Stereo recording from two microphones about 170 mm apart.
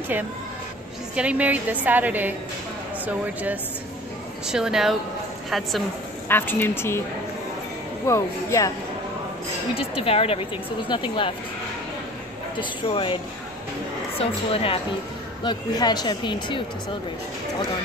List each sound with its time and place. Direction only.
1.1 s a woman's voice: 10° right (ahead or behind)
4.5 s speech: 5° right (ahead or behind)
6.2 s a woman's voice: 10° left (ahead or behind)
8.1 s a woman's voice: 15° left (ahead or behind)
9.8 s speech: 35° left (ahead or behind)
12.5 s speech: 30° left (ahead or behind)
15.4 s speech: 25° left (ahead or behind)